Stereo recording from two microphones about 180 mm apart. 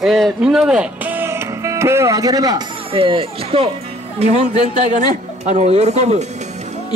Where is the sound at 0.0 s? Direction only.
Centre (ahead or behind); by 2.6 s 20° right (ahead or behind).